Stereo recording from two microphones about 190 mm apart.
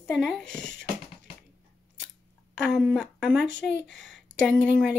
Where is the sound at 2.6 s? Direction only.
Centre (ahead or behind).